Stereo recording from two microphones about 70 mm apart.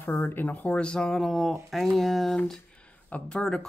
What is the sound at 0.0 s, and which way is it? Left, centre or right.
Speech, left.